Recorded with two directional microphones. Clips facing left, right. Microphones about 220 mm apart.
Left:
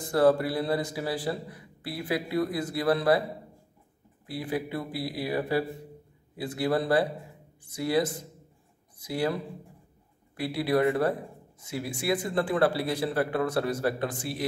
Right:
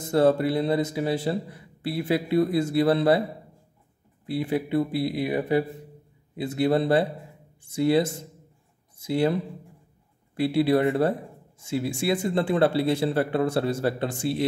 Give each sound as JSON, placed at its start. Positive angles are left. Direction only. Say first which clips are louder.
{"t": 0.0, "sound": "a man's voice", "louder": "right 2 dB", "side_deg": -25}
{"t": 4.3, "sound": "a man's voice", "louder": "right 6 dB", "side_deg": -25}